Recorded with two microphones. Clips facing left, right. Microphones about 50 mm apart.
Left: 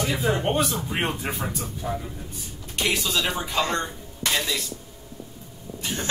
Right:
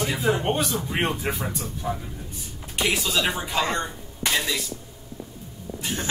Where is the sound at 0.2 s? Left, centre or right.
Centre.